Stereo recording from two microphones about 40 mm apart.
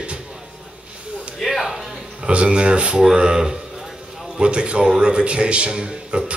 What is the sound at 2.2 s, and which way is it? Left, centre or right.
Speech, right.